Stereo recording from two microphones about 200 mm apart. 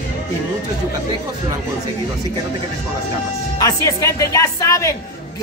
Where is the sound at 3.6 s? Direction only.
20° left (ahead or behind).